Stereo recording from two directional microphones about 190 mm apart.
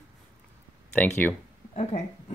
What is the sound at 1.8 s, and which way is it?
Speech, 35° left (ahead or behind).